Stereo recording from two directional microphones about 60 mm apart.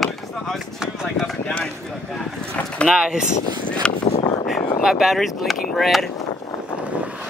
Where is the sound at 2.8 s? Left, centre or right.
Centre.